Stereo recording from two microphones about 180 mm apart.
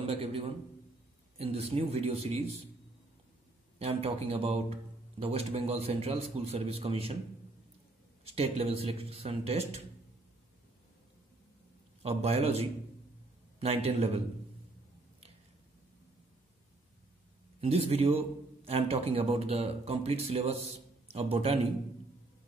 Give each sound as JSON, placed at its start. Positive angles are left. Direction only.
{"t": 0.0, "sound": "a man's voice", "side_deg": -35}
{"t": 3.8, "sound": "a man's voice", "side_deg": -35}
{"t": 8.2, "sound": "a man's voice", "side_deg": -35}
{"t": 12.0, "sound": "a man's voice", "side_deg": -35}
{"t": 17.6, "sound": "a man's voice", "side_deg": -35}